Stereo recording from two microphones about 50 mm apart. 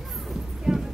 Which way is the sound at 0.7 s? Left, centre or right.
Centre.